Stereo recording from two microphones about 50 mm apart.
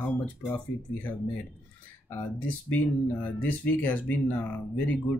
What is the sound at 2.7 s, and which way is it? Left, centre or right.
Speech, left.